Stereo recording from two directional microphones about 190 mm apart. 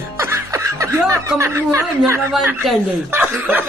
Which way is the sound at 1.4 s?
15° right (ahead or behind).